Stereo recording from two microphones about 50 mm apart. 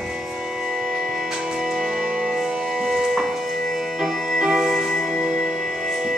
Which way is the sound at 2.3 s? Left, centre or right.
Centre.